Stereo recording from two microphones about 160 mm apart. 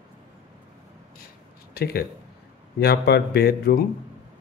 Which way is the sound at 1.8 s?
80° left.